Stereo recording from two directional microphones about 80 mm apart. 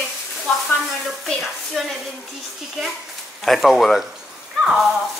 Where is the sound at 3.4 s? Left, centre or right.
Centre.